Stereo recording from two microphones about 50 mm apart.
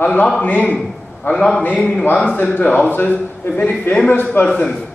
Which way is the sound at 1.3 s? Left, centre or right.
Left.